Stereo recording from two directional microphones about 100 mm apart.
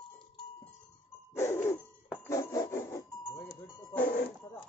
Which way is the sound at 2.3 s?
35° left (ahead or behind).